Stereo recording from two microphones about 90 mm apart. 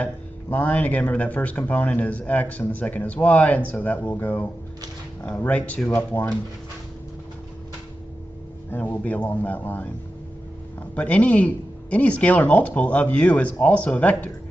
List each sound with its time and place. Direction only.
0.0 s speech: 20° left (ahead or behind)
8.6 s speech: 20° left (ahead or behind)
11.0 s speech: 15° left (ahead or behind)